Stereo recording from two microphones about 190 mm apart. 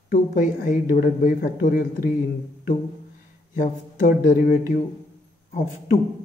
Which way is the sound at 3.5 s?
45° left (ahead or behind).